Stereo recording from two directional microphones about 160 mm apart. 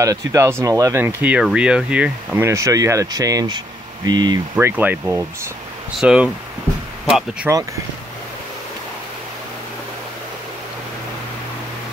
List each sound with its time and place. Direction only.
0.0 s speech: 20° right (ahead or behind)
4.6 s speech: 10° right (ahead or behind)
7.5 s speech: 15° right (ahead or behind)